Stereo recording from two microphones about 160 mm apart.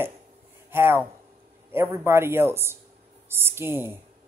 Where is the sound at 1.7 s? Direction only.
15° right (ahead or behind).